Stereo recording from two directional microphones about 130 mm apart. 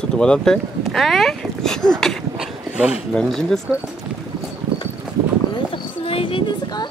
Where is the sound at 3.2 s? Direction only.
5° left (ahead or behind).